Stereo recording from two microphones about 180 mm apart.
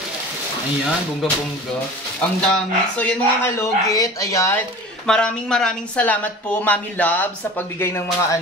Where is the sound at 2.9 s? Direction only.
10° left (ahead or behind).